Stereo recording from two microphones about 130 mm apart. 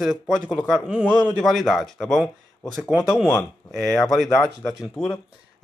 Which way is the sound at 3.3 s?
25° left (ahead or behind).